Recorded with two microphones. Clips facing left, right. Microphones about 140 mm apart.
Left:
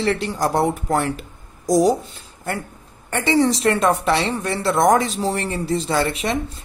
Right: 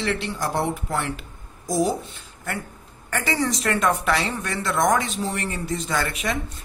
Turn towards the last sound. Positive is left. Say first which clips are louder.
# left 5 dB
turn(degrees=30)  # may be behind; listen again after turning